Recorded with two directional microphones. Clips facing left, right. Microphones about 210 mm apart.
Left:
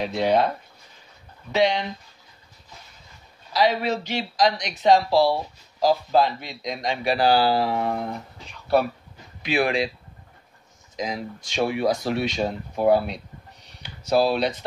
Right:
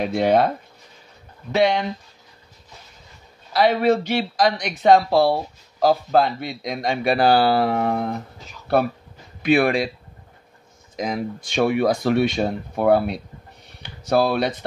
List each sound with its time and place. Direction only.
0.0 s speech: 55° right (ahead or behind)
1.5 s speech: 55° right (ahead or behind)
3.5 s speech: 55° right (ahead or behind)
9.4 s speech: 55° right (ahead or behind)
11.0 s speech: 55° right (ahead or behind)
13.7 s a sound: 55° right (ahead or behind)